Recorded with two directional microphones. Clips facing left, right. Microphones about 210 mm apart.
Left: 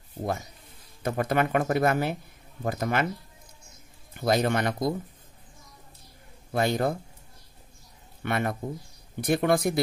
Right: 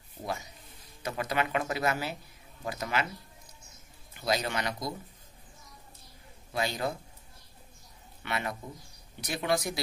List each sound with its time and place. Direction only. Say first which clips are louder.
1.0 s speech: left 6 dB; 55° left (ahead or behind)
4.1 s speech: left 7 dB; 55° left (ahead or behind)
6.5 s speech: left 7 dB; 55° left (ahead or behind)
8.2 s a man's voice: left 7 dB; 50° left (ahead or behind)